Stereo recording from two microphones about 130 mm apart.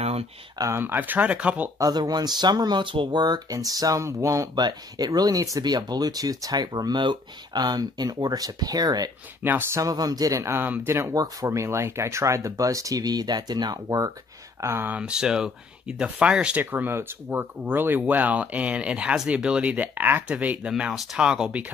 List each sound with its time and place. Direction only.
0.0 s a sound: 50° right (ahead or behind)
0.6 s speech: 20° right (ahead or behind)
1.8 s speech: 30° right (ahead or behind)
9.4 s speech: 15° right (ahead or behind)